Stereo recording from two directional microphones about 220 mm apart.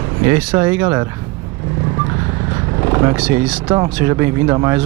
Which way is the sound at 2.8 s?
15° right (ahead or behind).